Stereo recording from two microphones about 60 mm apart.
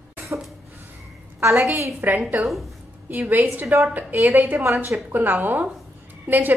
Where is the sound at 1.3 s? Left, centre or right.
Right.